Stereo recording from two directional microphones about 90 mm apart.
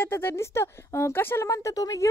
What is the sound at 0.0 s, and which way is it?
Speech, 25° left (ahead or behind).